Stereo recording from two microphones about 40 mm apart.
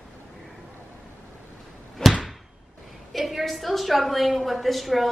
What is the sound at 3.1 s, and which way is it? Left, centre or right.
A woman's voice, centre.